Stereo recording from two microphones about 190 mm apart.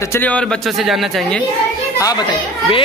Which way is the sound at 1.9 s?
20° left (ahead or behind).